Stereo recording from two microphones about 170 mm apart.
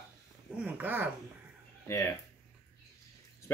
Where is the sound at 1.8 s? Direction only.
15° left (ahead or behind).